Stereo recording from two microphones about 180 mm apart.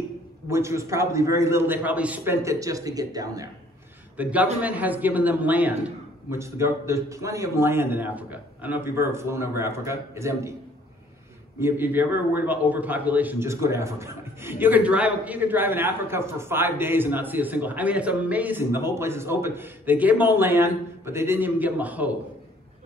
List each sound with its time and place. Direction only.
0.5 s a man's voice: 15° right (ahead or behind)
4.2 s a man's voice: 10° right (ahead or behind)
11.6 s a man's voice: 10° right (ahead or behind)